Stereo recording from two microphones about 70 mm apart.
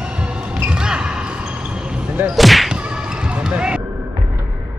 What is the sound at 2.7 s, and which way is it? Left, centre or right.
Basketball bounce, centre.